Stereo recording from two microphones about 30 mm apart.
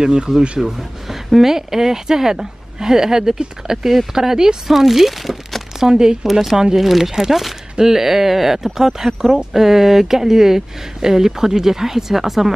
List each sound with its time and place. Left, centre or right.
0.0 s speech: right
0.6 s speech: centre
5.8 s speech: centre
6.8 s speech: centre